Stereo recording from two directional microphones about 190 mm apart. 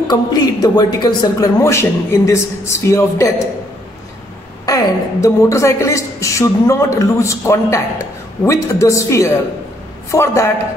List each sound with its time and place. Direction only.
0.1 s a woman's voice: 20° left (ahead or behind)
4.6 s a woman's voice: 15° left (ahead or behind)